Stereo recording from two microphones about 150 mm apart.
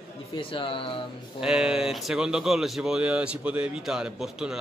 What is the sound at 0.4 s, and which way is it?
Speech, 35° left (ahead or behind).